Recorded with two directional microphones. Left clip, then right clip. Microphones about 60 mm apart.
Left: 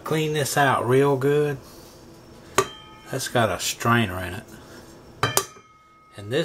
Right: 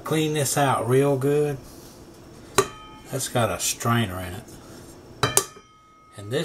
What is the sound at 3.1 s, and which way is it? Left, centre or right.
Speech, left.